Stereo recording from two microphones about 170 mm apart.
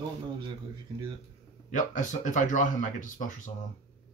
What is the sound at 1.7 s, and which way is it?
Speech, 50° left (ahead or behind).